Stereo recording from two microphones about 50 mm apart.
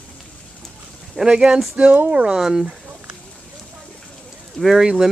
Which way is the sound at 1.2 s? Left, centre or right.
Centre.